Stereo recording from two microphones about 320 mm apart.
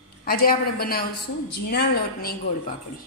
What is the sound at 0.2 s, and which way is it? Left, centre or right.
A woman's voice, left.